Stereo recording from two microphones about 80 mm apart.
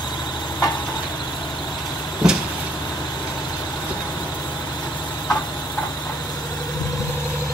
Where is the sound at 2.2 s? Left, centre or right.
Centre.